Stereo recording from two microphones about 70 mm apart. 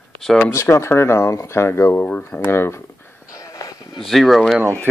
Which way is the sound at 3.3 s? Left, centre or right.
Left.